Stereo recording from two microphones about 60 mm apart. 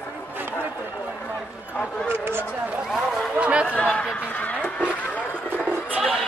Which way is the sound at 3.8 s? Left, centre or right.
Centre.